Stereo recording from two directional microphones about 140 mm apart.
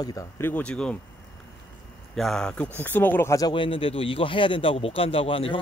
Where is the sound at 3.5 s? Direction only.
40° left (ahead or behind).